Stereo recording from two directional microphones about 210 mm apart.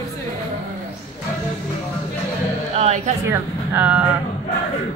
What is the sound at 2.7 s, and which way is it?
Music, 30° right (ahead or behind).